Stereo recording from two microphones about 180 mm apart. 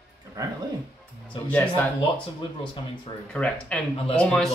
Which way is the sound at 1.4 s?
10° left (ahead or behind).